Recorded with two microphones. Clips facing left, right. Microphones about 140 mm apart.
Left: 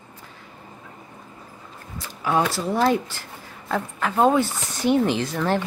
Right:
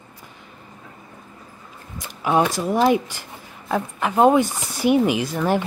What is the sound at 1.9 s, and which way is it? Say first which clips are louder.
Speech: right 3 dB; 15° right (ahead or behind).